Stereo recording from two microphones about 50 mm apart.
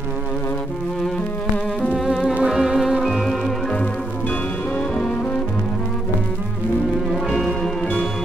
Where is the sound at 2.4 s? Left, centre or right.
Centre.